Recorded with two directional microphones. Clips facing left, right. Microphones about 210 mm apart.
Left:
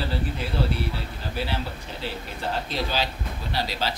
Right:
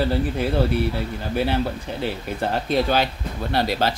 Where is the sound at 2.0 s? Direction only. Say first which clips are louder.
Right 7 dB; 55° right (ahead or behind).